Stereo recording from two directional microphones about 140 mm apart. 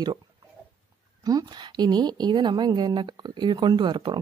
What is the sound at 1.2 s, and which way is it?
Speech, 30° right (ahead or behind).